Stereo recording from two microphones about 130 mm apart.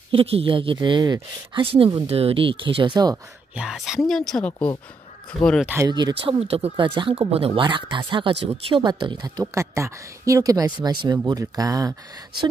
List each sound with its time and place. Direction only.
0.1 s speech: 45° right (ahead or behind)
3.5 s speech: 5° right (ahead or behind)
5.9 s speech: 35° right (ahead or behind)
6.1 s speech: 45° right (ahead or behind)
8.8 s speech: 35° right (ahead or behind)